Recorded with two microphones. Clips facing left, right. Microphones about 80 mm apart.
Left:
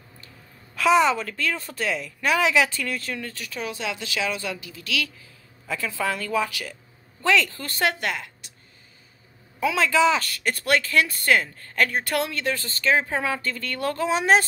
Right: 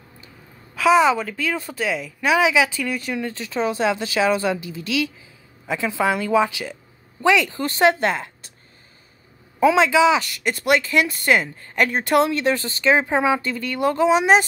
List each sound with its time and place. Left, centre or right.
0.7 s speech: centre; by 8.5 s right
9.8 s speech: centre